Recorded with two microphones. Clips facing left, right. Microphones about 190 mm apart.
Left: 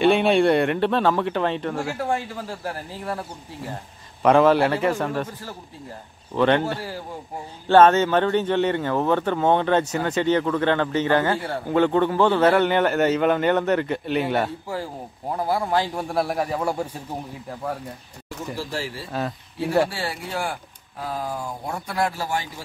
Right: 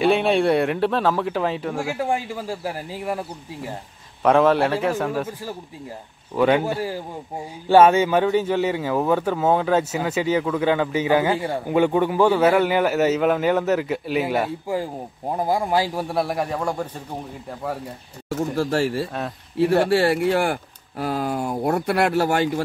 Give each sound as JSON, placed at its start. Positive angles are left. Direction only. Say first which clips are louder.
{"t": 0.0, "sound": "a man's voice", "louder": "left 1 dB", "side_deg": 0}
{"t": 4.2, "sound": "a man's voice", "louder": "even", "side_deg": 0}
{"t": 18.5, "sound": "speech", "louder": "right 7 dB", "side_deg": -60}
{"t": 19.1, "sound": "a man's voice", "louder": "right 4 dB", "side_deg": 0}
{"t": 19.9, "sound": "speech", "louder": "right 12 dB", "side_deg": -70}